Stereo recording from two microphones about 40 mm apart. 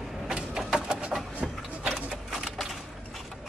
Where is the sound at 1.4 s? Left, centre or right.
Centre.